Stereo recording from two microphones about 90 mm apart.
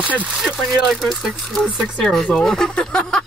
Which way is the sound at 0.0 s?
15° right (ahead or behind).